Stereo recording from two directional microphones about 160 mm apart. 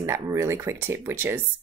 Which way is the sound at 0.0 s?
15° right (ahead or behind).